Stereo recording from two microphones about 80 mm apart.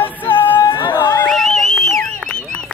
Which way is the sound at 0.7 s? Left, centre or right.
Left.